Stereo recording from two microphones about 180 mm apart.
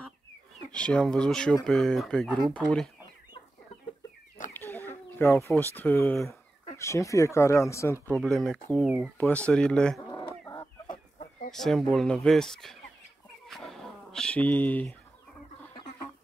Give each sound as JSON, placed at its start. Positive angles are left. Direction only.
{"t": 0.7, "sound": "speech", "side_deg": 5}
{"t": 4.6, "sound": "chicken", "side_deg": 10}
{"t": 5.5, "sound": "speech", "side_deg": 10}
{"t": 8.2, "sound": "speech", "side_deg": 0}
{"t": 9.3, "sound": "speech", "side_deg": 5}
{"t": 9.9, "sound": "chicken", "side_deg": 20}
{"t": 10.9, "sound": "chicken", "side_deg": 50}
{"t": 11.5, "sound": "speech", "side_deg": 0}
{"t": 13.5, "sound": "a sound", "side_deg": 0}